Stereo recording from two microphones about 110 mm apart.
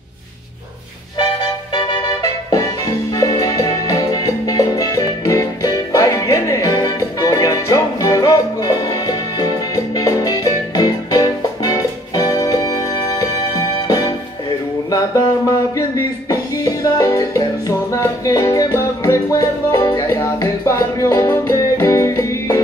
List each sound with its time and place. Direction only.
1.1 s music: 50° left (ahead or behind)
3.2 s music: 35° left (ahead or behind)